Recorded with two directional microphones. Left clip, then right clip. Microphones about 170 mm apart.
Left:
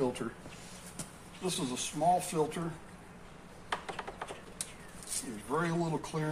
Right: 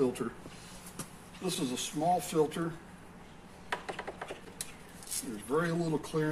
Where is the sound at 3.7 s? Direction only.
5° left (ahead or behind).